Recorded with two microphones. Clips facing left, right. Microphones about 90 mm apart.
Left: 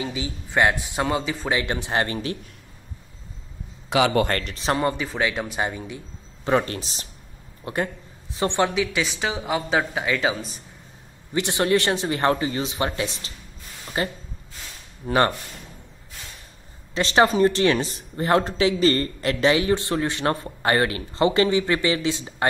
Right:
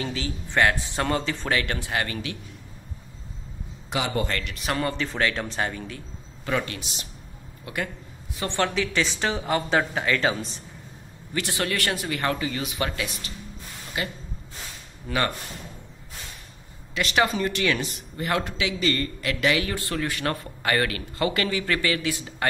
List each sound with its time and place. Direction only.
0.0 s a man's voice: 15° left (ahead or behind)
1.5 s speech: 20° left (ahead or behind)
3.9 s speech: 90° left
4.3 s a man's voice: 45° left (ahead or behind)
4.6 s speech: 25° left (ahead or behind)
4.9 s a man's voice: 10° left (ahead or behind)
6.5 s speech: 35° left (ahead or behind)
8.4 s speech: 20° left (ahead or behind)
8.7 s speech: 5° left (ahead or behind)
11.3 s speech: 20° left (ahead or behind)
16.9 s speech: 30° left (ahead or behind)